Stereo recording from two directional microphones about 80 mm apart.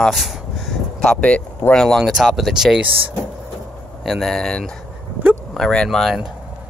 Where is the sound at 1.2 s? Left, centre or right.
Centre.